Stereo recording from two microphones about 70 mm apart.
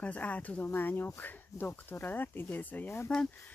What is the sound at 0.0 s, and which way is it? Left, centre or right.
Speech, centre.